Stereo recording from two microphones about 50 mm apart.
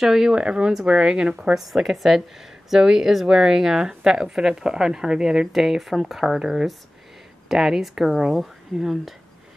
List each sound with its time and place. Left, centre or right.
0.0 s speech: centre
1.5 s speech: centre
5.5 s speech: centre